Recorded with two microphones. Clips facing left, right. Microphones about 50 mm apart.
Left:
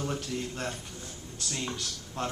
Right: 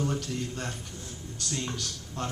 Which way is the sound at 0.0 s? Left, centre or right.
Centre.